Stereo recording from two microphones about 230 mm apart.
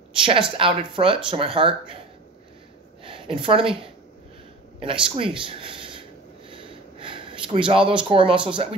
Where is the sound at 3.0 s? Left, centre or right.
Right.